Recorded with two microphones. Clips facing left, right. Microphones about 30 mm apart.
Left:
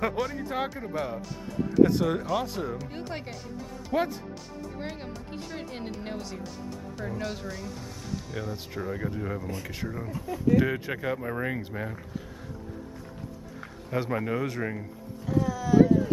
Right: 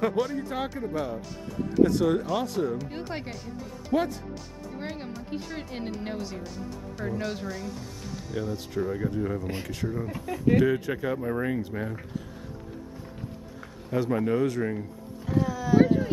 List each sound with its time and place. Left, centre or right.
0.0 s speech: centre
2.9 s speech: centre
10.0 s speech: right
10.6 s speech: centre
13.6 s a sound: centre
14.2 s speech: centre
15.3 s a sound: centre
15.8 s speech: right